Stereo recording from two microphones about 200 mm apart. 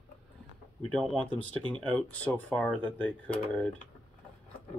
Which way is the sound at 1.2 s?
25° right (ahead or behind).